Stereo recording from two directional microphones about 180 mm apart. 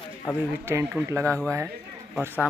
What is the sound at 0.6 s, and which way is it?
Speech, 15° right (ahead or behind).